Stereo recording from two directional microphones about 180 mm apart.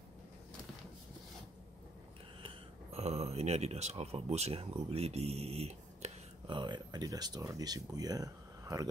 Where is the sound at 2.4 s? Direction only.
35° right (ahead or behind).